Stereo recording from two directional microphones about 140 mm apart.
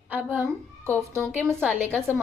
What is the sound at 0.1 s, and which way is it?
A child's voice, 15° right (ahead or behind).